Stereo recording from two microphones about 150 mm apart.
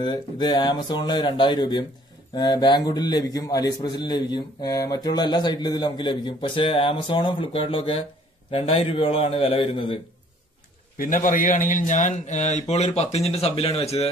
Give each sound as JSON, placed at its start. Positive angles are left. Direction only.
{"t": 0.0, "sound": "a man's voice", "side_deg": 30}
{"t": 11.0, "sound": "a man's voice", "side_deg": 65}